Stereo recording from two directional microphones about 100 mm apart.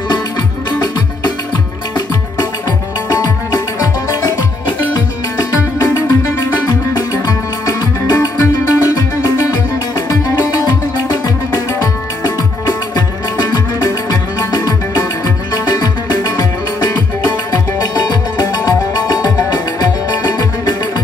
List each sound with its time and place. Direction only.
3.1 s music: 40° left (ahead or behind)
6.0 s music: 25° left (ahead or behind)
7.6 s music: 35° left (ahead or behind)
9.9 s music: 35° left (ahead or behind)
13.8 s music: 30° left (ahead or behind)
17.9 s music: 40° left (ahead or behind)